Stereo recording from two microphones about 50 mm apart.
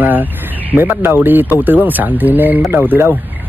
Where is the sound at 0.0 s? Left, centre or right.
Right.